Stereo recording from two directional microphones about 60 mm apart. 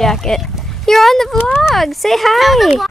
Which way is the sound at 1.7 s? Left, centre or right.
Centre.